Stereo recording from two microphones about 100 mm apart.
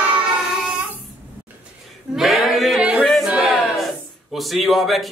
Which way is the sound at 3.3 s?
10° right (ahead or behind).